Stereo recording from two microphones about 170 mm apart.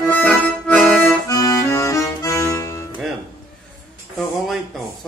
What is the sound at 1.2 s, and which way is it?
Accordion, 20° left (ahead or behind).